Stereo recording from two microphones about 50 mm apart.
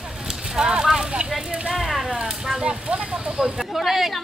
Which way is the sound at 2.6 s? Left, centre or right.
Right.